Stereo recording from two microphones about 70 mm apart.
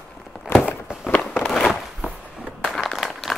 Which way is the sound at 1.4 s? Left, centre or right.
Centre.